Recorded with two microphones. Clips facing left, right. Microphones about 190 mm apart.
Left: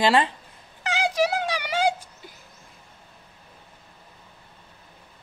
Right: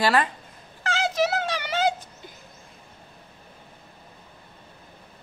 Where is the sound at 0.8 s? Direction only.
15° left (ahead or behind).